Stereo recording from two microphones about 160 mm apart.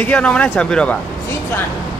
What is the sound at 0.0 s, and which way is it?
Speech, 5° left (ahead or behind).